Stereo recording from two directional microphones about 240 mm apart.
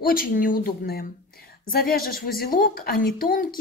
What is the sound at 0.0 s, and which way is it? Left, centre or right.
Speech, left.